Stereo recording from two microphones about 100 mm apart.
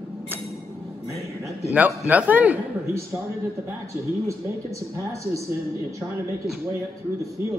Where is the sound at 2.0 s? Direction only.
15° right (ahead or behind).